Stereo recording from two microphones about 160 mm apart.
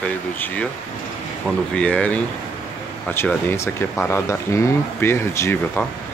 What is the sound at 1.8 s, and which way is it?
Speech, 10° left (ahead or behind).